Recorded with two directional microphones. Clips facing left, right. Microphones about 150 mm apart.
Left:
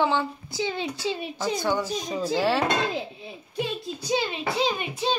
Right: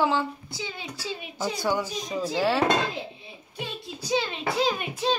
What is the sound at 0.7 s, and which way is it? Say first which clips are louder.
Speech: left 7 dB; 25° left (ahead or behind).